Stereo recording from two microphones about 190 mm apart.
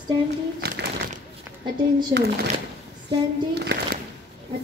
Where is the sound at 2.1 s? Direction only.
55° right (ahead or behind).